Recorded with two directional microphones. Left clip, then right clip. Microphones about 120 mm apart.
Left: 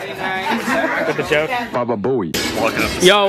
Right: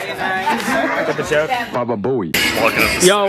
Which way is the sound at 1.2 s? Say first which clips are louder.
Even; 25° left (ahead or behind).